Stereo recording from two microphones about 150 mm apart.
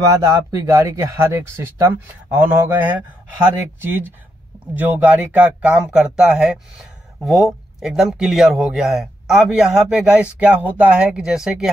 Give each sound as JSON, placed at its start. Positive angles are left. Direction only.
{"t": 0.2, "sound": "speech", "side_deg": -20}